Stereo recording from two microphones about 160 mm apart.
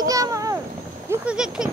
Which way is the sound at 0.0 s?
20° right (ahead or behind).